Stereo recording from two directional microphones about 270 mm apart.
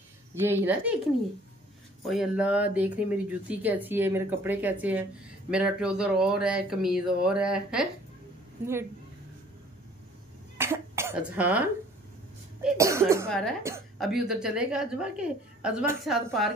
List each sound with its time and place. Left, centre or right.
0.3 s cough: centre
2.0 s a woman's voice: centre
10.6 s speech: centre
12.6 s cough: centre
13.3 s a woman's voice: centre